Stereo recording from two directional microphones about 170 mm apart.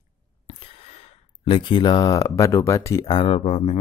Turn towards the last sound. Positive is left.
turn(degrees=30)  # may be behind; listen again after turning